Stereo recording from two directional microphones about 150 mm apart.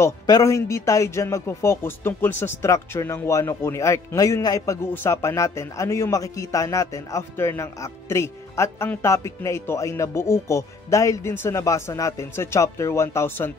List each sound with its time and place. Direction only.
0.0 s a man's voice: 20° left (ahead or behind)